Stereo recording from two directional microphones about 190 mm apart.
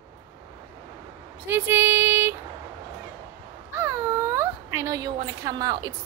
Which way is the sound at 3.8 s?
15° right (ahead or behind).